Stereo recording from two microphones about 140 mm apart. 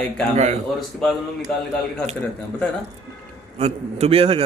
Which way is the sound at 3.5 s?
50° right (ahead or behind).